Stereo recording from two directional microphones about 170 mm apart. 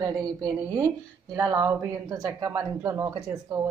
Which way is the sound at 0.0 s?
20° right (ahead or behind).